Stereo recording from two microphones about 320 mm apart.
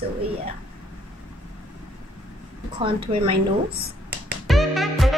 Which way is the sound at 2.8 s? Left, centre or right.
Centre.